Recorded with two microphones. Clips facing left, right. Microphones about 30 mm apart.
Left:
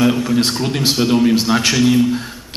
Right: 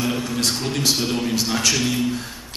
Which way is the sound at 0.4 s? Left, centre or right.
Left.